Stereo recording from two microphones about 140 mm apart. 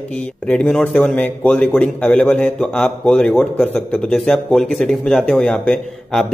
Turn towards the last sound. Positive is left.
turn(degrees=0)  # may be behind; listen again after turning